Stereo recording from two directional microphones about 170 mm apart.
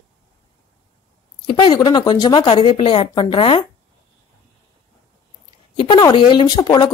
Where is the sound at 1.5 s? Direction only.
25° left (ahead or behind).